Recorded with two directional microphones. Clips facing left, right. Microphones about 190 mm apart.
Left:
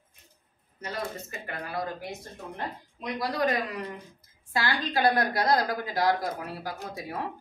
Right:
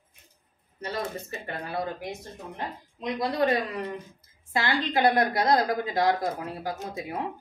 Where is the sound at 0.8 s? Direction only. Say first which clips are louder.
Right 2 dB; 30° right (ahead or behind).